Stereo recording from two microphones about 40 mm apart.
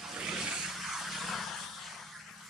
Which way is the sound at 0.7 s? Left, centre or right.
Centre.